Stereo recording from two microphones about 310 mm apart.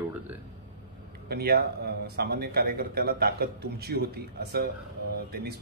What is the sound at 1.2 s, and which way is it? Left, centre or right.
A man's voice, right.